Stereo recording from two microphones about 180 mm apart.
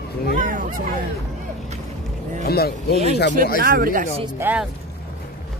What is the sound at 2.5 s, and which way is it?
Speech, 60° left (ahead or behind).